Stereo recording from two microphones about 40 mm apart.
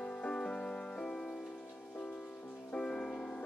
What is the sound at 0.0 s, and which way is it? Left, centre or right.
Music, left.